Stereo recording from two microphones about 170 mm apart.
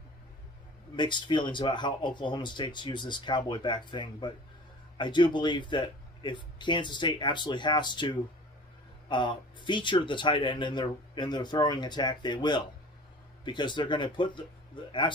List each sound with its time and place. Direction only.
0.9 s a man's voice: 25° left (ahead or behind)